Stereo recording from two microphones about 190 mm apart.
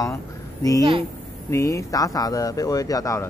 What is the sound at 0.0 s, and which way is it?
Speech, 15° left (ahead or behind).